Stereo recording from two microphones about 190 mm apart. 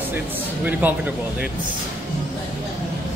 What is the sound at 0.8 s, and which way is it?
Speech, 10° right (ahead or behind).